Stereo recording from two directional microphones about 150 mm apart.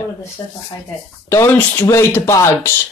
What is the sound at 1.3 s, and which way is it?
Speech, 20° left (ahead or behind).